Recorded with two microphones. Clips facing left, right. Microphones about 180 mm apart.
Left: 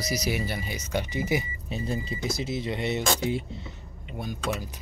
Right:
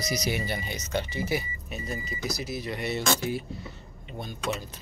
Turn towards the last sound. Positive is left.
turn(degrees=10)  # may be behind; listen again after turning